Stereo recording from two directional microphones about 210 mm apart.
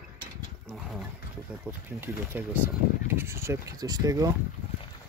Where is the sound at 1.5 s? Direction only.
5° right (ahead or behind).